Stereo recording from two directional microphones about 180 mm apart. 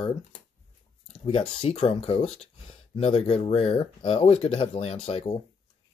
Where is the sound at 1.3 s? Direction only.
30° left (ahead or behind).